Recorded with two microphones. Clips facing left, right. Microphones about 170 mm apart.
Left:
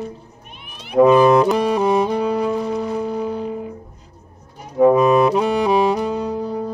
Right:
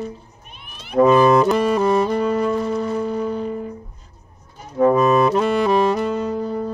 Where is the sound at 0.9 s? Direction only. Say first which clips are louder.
Left 2 dB; centre (ahead or behind).